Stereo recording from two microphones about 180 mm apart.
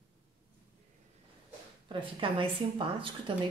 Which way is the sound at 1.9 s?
30° right (ahead or behind).